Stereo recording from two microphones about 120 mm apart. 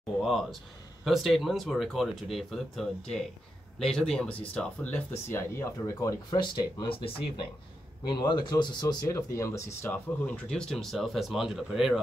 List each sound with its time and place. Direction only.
0.2 s speech: centre (ahead or behind); by 8.9 s 40° left (ahead or behind)
9.0 s speech: 25° left (ahead or behind); by 12.0 s 5° right (ahead or behind)